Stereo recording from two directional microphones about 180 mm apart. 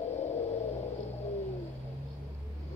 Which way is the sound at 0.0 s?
40° left (ahead or behind).